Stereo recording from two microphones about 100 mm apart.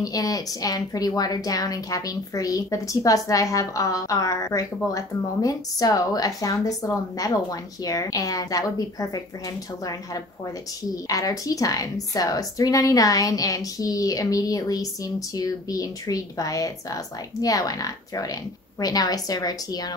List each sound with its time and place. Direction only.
0.0 s a woman's voice: 35° left (ahead or behind)
11.1 s a woman's voice: 35° left (ahead or behind)